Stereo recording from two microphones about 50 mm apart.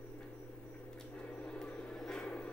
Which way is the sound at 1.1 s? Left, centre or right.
Left.